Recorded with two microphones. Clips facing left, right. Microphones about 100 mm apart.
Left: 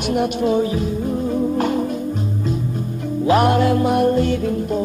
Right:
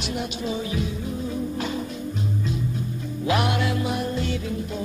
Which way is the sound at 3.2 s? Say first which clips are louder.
Left 8 dB; 40° left (ahead or behind).